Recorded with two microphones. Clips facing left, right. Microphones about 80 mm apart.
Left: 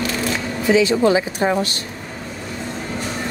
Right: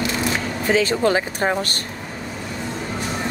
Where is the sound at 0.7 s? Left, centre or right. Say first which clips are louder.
Left 3 dB; right.